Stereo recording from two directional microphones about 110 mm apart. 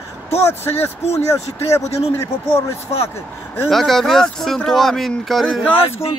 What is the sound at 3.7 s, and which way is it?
Speech, 5° left (ahead or behind).